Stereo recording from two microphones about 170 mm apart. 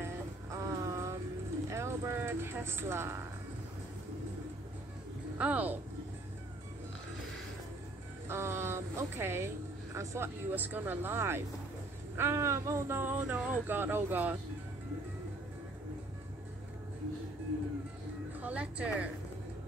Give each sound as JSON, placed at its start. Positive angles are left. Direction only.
{"t": 0.0, "sound": "music", "side_deg": -20}
{"t": 1.7, "sound": "a sound", "side_deg": -15}
{"t": 5.4, "sound": "speech", "side_deg": -10}
{"t": 8.3, "sound": "speech", "side_deg": -15}
{"t": 18.4, "sound": "music", "side_deg": -5}